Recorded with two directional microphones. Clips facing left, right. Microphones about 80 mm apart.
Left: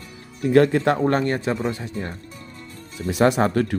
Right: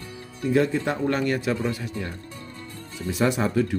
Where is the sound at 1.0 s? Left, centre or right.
Left.